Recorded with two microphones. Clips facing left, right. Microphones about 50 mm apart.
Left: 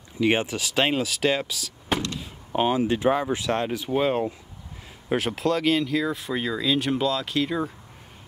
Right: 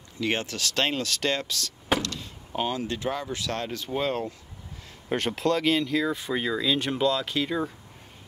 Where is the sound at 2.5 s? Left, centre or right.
Left.